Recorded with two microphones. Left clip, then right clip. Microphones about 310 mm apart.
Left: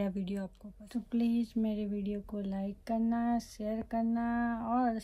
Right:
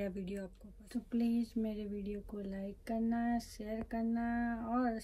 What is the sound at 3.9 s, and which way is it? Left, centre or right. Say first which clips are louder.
Speech: left 4 dB; left.